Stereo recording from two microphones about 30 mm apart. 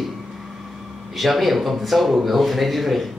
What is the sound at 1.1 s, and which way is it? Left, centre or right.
Speech, centre.